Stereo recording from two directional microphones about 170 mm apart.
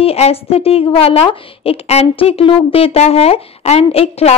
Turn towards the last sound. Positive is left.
turn(degrees=35)  # may be behind; listen again after turning